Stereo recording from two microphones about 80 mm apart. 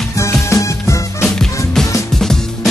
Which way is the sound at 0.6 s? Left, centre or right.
Left.